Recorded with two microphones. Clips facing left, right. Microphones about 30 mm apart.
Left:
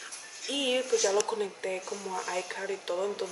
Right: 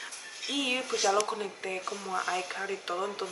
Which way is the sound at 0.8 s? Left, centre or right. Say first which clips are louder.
Left 1 dB; right.